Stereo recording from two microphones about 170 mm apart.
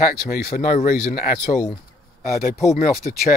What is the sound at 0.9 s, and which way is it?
Speech, 60° left (ahead or behind).